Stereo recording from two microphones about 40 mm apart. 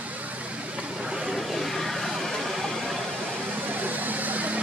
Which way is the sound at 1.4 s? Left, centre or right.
Centre.